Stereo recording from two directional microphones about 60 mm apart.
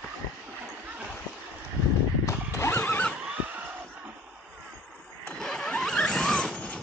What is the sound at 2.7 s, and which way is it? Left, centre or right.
Horse, left.